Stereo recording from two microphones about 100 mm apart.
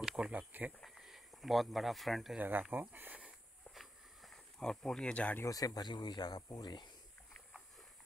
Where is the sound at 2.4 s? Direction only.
15° right (ahead or behind).